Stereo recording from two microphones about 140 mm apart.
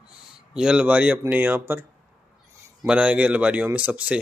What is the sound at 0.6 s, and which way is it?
Speech, 5° right (ahead or behind).